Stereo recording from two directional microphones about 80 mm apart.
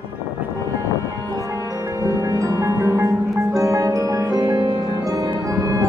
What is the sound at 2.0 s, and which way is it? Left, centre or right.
Music, right.